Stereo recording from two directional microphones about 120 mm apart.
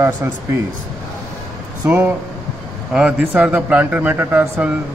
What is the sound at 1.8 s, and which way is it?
Speech, 15° right (ahead or behind).